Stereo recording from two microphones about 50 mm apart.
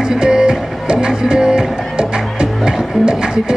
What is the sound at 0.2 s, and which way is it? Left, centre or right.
Music, centre.